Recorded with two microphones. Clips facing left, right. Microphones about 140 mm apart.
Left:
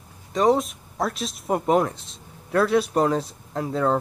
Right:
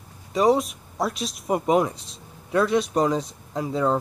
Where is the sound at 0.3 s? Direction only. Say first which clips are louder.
Even; centre (ahead or behind).